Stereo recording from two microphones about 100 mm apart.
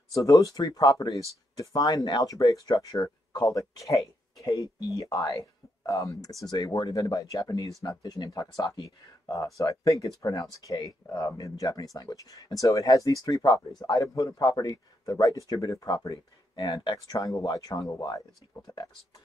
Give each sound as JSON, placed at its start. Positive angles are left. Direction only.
{"t": 0.1, "sound": "speech", "side_deg": 35}